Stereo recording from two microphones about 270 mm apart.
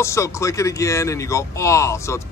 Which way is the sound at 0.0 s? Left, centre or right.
Centre.